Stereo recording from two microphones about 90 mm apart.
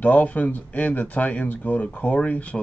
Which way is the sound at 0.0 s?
20° left (ahead or behind).